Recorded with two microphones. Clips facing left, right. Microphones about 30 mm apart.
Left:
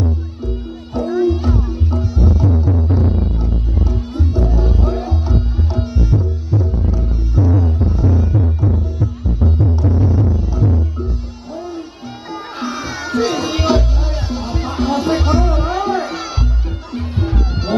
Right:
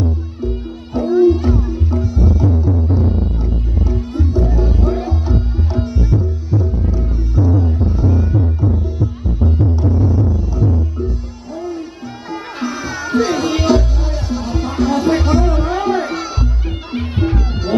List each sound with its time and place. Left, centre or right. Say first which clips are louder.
0.0 s music: right 1 dB; centre
1.5 s music: right 2 dB; centre
7.6 s music: even; centre
13.2 s music: right 1 dB; centre